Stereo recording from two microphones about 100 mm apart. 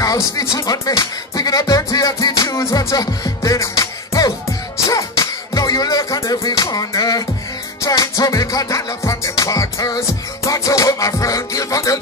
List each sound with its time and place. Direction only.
0.0 s speech: 35° left (ahead or behind)
4.8 s music: 35° left (ahead or behind)
7.8 s speech: 35° left (ahead or behind)